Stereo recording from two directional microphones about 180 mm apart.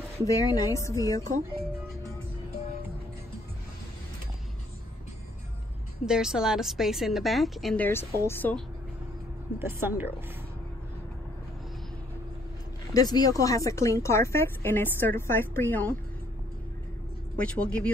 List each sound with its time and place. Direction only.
0.2 s a woman's voice: 20° left (ahead or behind)
6.0 s a woman's voice: 5° right (ahead or behind)
9.6 s speech: 15° right (ahead or behind)
12.9 s a woman's voice: 20° left (ahead or behind)
17.4 s a woman's voice: 5° left (ahead or behind)